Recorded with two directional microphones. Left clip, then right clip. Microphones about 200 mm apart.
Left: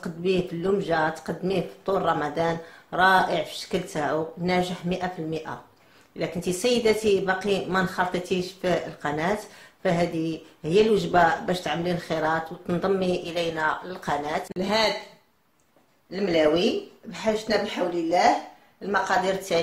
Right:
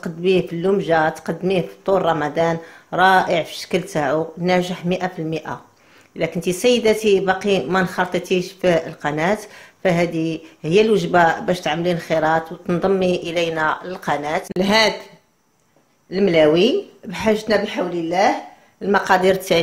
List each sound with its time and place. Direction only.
0.0 s speech: 25° right (ahead or behind)
14.6 s a woman's voice: 45° right (ahead or behind)
16.1 s a woman's voice: 50° right (ahead or behind)